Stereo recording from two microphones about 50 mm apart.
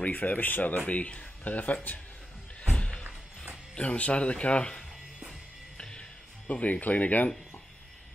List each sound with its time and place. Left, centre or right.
0.0 s speech: left
2.6 s music: centre
3.7 s speech: left
5.8 s music: centre